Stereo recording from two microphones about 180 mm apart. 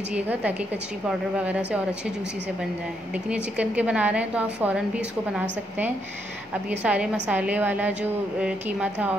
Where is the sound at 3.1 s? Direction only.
5° right (ahead or behind).